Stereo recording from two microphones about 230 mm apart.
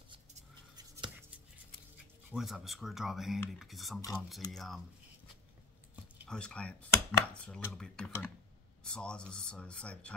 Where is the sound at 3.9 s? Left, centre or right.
Centre.